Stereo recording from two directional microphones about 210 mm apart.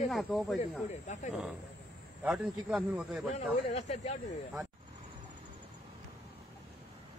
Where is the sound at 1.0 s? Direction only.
35° left (ahead or behind).